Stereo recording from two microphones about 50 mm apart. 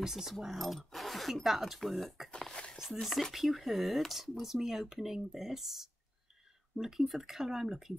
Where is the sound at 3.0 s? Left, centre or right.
Centre.